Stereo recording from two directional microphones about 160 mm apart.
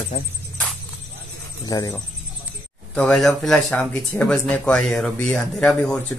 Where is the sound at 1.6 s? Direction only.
25° left (ahead or behind).